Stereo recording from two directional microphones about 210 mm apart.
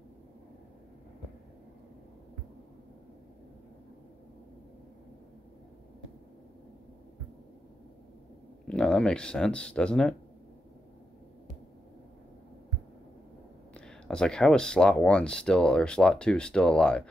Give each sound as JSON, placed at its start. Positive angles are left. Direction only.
{"t": 8.6, "sound": "speech", "side_deg": 5}
{"t": 13.7, "sound": "speech", "side_deg": 5}